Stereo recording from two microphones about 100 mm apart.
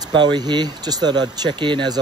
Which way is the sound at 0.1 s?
50° right (ahead or behind).